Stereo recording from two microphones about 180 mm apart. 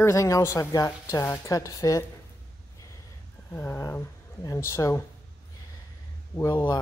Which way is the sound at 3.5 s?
10° left (ahead or behind).